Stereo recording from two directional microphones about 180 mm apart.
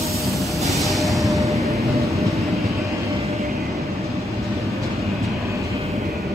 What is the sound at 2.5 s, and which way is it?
Train, centre (ahead or behind).